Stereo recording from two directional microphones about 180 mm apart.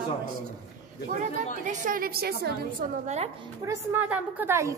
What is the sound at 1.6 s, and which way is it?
A woman's voice, 45° right (ahead or behind).